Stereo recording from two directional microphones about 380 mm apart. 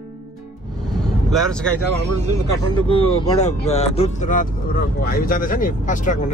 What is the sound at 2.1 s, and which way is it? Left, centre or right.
Speech, right.